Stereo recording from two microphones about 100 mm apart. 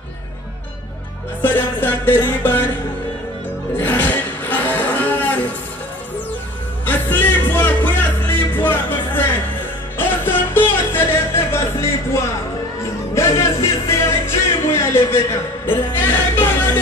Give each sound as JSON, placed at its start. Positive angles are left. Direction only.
{"t": 1.4, "sound": "music", "side_deg": 20}
{"t": 3.7, "sound": "a sound", "side_deg": 20}
{"t": 6.9, "sound": "music", "side_deg": 20}